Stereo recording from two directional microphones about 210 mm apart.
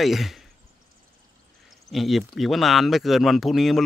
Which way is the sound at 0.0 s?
Centre (ahead or behind).